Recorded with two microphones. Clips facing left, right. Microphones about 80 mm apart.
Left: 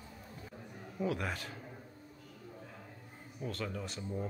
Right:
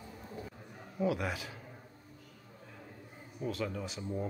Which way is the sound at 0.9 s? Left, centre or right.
Centre.